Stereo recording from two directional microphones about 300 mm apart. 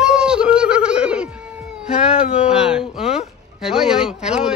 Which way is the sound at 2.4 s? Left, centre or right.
Centre.